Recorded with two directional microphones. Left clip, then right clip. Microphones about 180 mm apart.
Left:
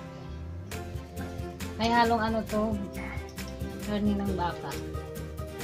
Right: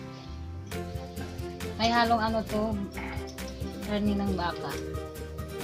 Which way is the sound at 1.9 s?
15° right (ahead or behind).